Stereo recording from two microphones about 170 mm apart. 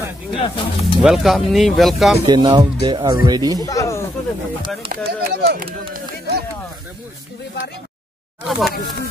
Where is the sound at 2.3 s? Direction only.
25° right (ahead or behind).